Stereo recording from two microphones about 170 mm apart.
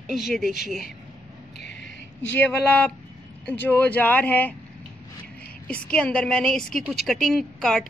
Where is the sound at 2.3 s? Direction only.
10° left (ahead or behind).